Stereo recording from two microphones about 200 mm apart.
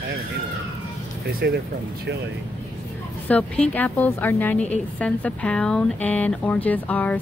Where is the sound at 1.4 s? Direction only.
55° right (ahead or behind).